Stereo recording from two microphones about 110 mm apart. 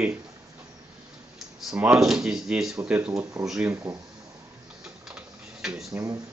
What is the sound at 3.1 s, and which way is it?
Speech, 30° right (ahead or behind).